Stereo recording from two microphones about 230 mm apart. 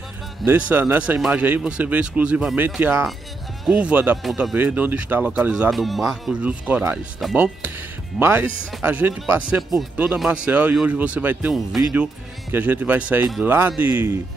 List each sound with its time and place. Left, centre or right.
0.5 s speech: centre